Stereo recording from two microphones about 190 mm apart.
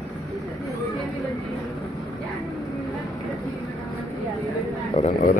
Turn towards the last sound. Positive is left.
turn(degrees=40)  # may be behind; listen again after turning